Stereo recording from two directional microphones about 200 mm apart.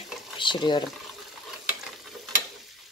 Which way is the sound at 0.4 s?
25° left (ahead or behind).